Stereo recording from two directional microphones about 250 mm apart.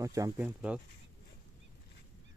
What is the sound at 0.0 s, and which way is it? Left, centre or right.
Speech, centre.